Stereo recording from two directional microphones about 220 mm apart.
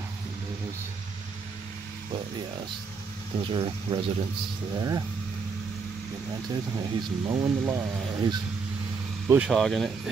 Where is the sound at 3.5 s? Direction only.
25° right (ahead or behind).